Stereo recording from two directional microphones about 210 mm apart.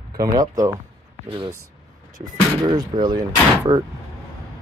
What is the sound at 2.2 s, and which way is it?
Speech, 20° right (ahead or behind).